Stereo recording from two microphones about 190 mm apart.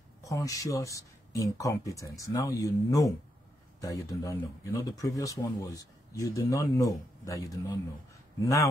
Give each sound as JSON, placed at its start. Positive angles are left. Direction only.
{"t": 0.2, "sound": "speech", "side_deg": 15}